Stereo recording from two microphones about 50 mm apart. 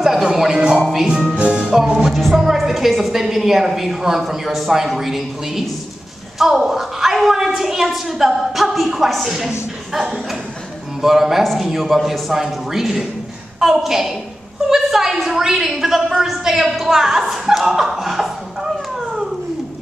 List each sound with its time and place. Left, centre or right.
0.0 s music: centre
2.3 s a woman's voice: centre
11.0 s music: centre
11.4 s a woman's voice: centre
13.6 s music: centre
14.7 s a woman's voice: centre